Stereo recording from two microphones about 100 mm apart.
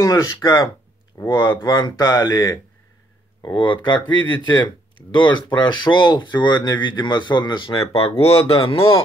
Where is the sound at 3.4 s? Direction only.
50° left (ahead or behind); by 9.0 s 70° left (ahead or behind).